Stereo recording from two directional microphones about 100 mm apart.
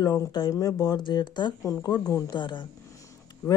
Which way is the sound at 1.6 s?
35° left (ahead or behind).